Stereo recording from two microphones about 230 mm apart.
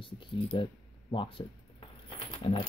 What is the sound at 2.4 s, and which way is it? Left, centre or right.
Speech, left.